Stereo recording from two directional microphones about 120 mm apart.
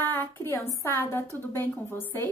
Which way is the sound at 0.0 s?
15° left (ahead or behind).